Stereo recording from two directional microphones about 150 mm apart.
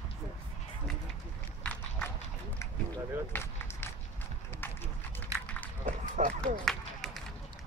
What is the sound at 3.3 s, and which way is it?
Speech, 10° left (ahead or behind).